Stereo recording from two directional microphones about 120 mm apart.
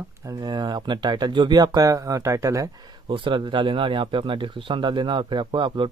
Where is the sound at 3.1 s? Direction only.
45° right (ahead or behind).